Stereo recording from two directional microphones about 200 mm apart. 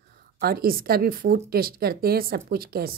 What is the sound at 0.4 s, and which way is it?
Speech, 50° right (ahead or behind).